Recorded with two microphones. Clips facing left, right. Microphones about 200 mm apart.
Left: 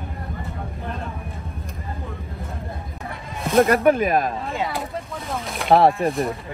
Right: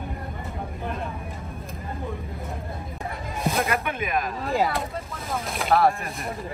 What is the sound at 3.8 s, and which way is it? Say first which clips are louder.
Speech: left 10 dB; 35° left (ahead or behind).